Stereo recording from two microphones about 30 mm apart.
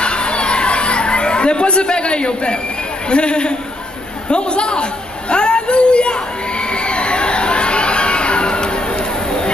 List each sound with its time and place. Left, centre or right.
0.0 s chatter: left
3.1 s a woman's voice: left
5.3 s a sound: left